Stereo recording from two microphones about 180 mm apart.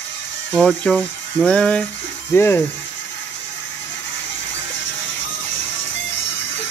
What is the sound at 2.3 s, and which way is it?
Speech, 15° left (ahead or behind).